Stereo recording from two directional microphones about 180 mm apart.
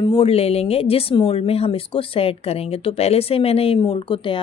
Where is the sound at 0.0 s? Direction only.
30° left (ahead or behind).